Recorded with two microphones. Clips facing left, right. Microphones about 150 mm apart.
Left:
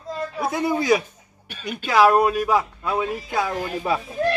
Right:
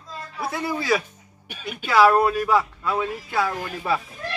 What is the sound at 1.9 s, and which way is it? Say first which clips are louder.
Speech: left 1 dB; 15° left (ahead or behind).